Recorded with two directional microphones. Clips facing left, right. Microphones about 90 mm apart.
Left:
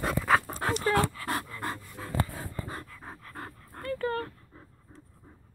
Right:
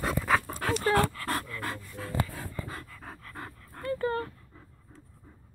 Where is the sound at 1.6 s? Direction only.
15° left (ahead or behind).